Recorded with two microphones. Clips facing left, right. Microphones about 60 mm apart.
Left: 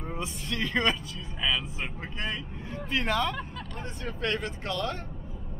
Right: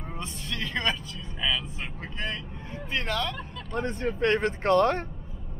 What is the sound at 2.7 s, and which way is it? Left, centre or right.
Speech, centre.